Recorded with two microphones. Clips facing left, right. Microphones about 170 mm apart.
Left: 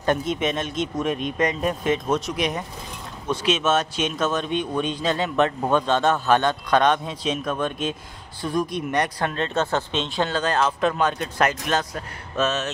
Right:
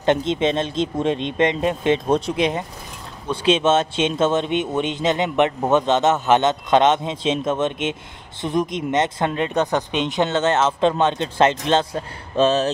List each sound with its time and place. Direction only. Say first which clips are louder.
0.0 s a man's voice: right 4 dB; 25° right (ahead or behind)